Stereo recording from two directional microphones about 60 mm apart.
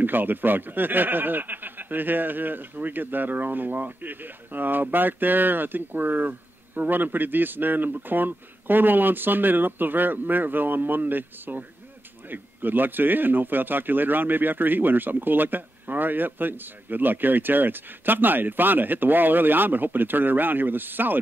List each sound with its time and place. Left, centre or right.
0.0 s speech: right